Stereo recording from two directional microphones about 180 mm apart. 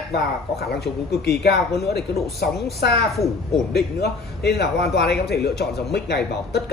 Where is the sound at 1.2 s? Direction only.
65° left (ahead or behind).